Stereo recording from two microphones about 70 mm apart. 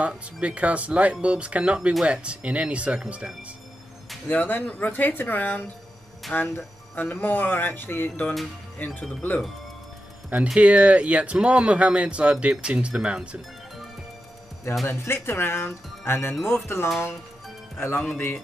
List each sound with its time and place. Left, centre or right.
0.0 s speech: centre
4.3 s speech: left
10.5 s speech: centre
14.9 s speech: left